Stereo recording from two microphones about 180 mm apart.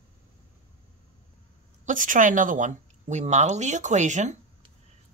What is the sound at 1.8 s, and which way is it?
Speech, 45° right (ahead or behind).